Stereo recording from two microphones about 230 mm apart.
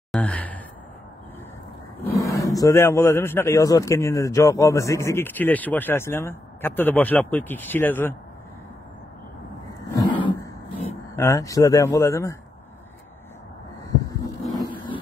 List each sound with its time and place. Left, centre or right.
0.1 s sigh: centre
2.0 s speech: centre
9.9 s a sound: centre
11.1 s speech: centre